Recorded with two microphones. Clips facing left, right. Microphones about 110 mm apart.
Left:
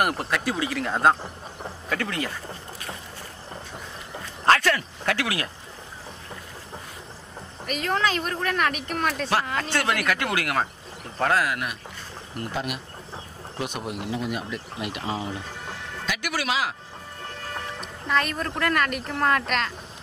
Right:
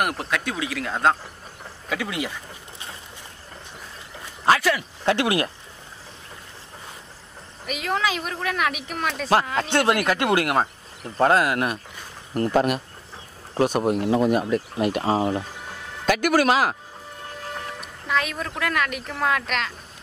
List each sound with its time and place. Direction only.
0.0 s speech: centre (ahead or behind)
1.9 s speech: 10° right (ahead or behind)
4.5 s speech: 10° right (ahead or behind)
5.0 s speech: 25° right (ahead or behind)
7.6 s speech: 5° right (ahead or behind)
9.6 s speech: 25° right (ahead or behind)
12.4 s speech: 45° right (ahead or behind)
17.7 s speech: centre (ahead or behind)